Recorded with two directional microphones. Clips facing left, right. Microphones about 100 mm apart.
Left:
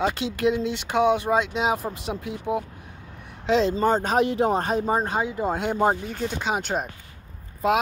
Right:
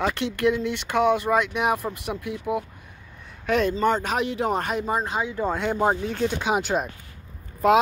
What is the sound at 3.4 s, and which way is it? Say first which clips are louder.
Speech: left 1 dB; 25° left (ahead or behind).